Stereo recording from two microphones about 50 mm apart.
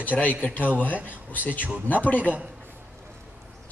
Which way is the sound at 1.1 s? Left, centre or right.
Left.